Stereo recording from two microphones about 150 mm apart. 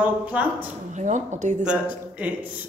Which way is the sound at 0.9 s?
55° right (ahead or behind).